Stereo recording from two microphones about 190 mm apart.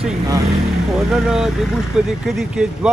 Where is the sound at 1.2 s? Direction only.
5° right (ahead or behind).